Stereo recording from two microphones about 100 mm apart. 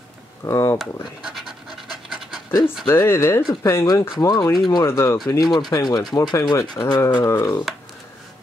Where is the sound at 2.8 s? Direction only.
25° left (ahead or behind).